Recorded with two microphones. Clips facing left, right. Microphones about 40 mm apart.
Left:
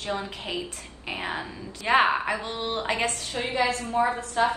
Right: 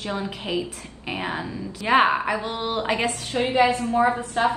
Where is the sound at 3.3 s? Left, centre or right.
Right.